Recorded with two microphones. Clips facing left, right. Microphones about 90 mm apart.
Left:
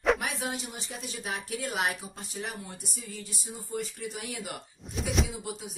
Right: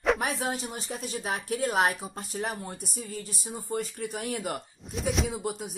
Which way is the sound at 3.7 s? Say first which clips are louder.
Right 3 dB; 45° right (ahead or behind).